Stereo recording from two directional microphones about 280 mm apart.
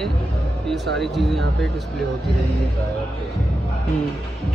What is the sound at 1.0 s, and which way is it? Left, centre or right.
Speech, centre.